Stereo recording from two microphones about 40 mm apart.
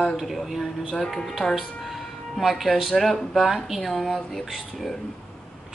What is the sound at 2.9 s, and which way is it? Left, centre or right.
Speech, centre.